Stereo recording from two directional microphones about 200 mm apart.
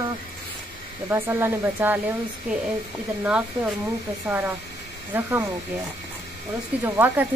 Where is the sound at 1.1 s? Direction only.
10° right (ahead or behind).